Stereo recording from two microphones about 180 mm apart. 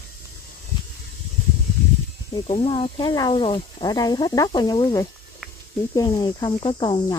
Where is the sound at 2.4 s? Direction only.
30° left (ahead or behind).